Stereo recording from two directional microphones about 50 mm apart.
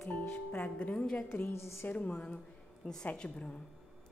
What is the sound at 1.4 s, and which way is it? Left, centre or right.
Speech, left.